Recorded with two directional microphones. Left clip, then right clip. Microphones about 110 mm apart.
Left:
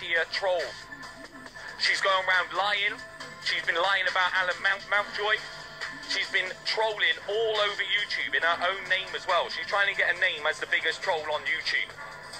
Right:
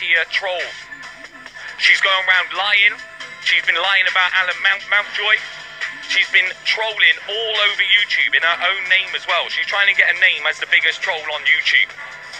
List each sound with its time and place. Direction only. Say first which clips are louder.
0.0 s speech: right 10 dB; 20° left (ahead or behind)
1.8 s speech: right 11 dB; 25° left (ahead or behind)